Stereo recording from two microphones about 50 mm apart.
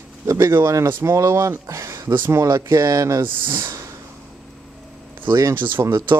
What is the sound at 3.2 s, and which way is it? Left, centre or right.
Speech, right.